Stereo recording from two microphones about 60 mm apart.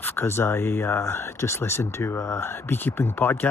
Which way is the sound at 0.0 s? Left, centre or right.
Left.